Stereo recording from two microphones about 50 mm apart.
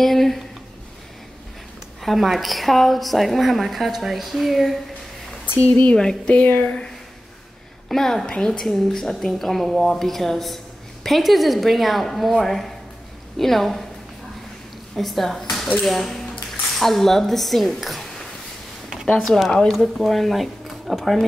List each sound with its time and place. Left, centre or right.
0.0 s a woman's voice: centre
2.1 s a woman's voice: centre
6.2 s speech: left
7.9 s a woman's voice: centre
15.0 s a woman's voice: centre
19.2 s a woman's voice: centre